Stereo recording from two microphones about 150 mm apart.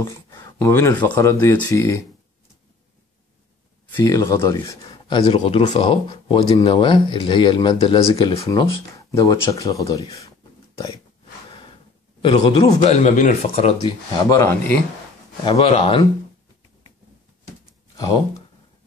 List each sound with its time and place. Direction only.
0.0 s speech: 20° left (ahead or behind)
3.9 s speech: 20° left (ahead or behind)
4.9 s speech: 35° left (ahead or behind)
8.5 s speech: 20° left (ahead or behind)
12.2 s speech: 35° left (ahead or behind)
12.9 s speech: 55° left (ahead or behind)
14.3 s speech: 15° left (ahead or behind)
15.4 s speech: 35° left (ahead or behind)
17.9 s speech: 25° left (ahead or behind)